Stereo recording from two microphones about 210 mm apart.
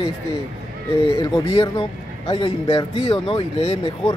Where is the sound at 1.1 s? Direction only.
25° left (ahead or behind).